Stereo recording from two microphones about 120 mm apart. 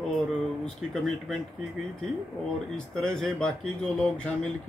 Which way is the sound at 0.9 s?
Centre (ahead or behind).